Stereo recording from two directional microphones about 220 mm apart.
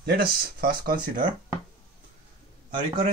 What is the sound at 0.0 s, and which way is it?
Speech, 45° right (ahead or behind).